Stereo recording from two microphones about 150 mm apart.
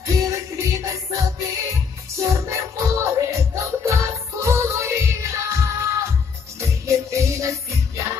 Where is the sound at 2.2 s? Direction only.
20° right (ahead or behind).